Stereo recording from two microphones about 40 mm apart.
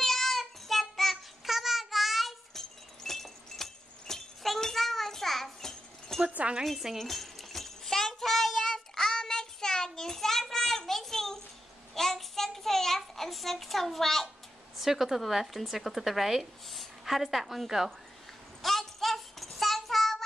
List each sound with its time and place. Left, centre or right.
0.0 s child singing: centre
2.5 s chink: centre
6.2 s speech: right
6.6 s speech: centre
7.0 s a sound: centre
11.9 s child singing: centre
14.8 s a woman's voice: centre
18.6 s child singing: centre